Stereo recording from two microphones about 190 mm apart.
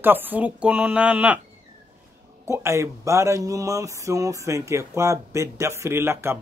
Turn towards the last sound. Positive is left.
turn(degrees=-15)  # may be behind; listen again after turning